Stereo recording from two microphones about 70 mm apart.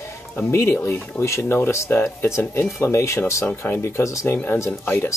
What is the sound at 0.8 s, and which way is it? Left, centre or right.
Speech, left.